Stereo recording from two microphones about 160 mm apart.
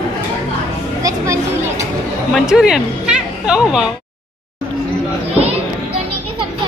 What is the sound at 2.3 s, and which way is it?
Speech, 5° right (ahead or behind).